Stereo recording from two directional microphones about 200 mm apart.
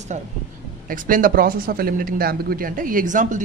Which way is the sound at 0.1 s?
35° right (ahead or behind).